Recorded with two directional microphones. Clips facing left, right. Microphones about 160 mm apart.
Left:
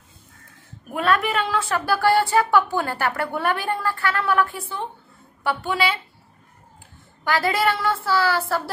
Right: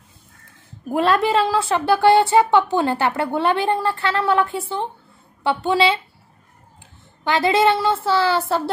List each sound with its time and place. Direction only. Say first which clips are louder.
0.8 s a woman's voice: right 4 dB; 30° right (ahead or behind)
7.2 s a woman's voice: right 4 dB; 20° right (ahead or behind)